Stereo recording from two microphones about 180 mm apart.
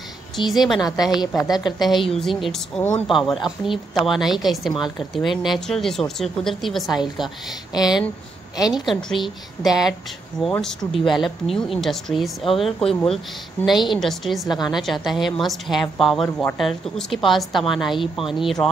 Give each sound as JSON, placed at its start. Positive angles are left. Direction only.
{"t": 0.4, "sound": "a woman's voice", "side_deg": 0}
{"t": 1.4, "sound": "speech", "side_deg": 20}
{"t": 1.8, "sound": "a woman's voice", "side_deg": 0}
{"t": 7.7, "sound": "speech", "side_deg": 20}
{"t": 8.7, "sound": "a woman's voice", "side_deg": 0}